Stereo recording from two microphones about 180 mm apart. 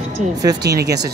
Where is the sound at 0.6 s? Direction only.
65° right (ahead or behind).